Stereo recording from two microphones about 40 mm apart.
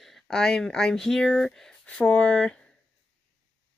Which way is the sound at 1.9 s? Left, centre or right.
Left.